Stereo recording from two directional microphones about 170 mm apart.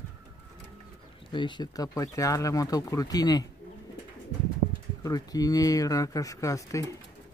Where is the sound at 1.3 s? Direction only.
25° left (ahead or behind).